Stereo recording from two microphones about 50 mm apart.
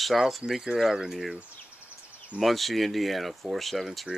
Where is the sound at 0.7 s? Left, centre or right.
Centre.